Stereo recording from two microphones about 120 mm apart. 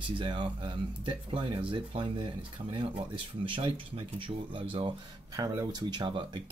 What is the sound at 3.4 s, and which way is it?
Speech, 45° right (ahead or behind).